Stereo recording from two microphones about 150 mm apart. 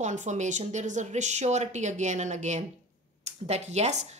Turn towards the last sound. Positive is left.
turn(degrees=-50)  # may be behind; listen again after turning